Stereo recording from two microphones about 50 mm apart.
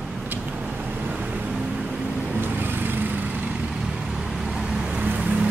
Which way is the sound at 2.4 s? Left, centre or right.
Right.